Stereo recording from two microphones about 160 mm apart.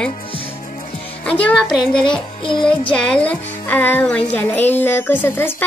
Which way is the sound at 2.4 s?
30° left (ahead or behind).